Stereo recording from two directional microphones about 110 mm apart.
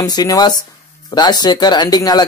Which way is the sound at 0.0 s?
35° left (ahead or behind).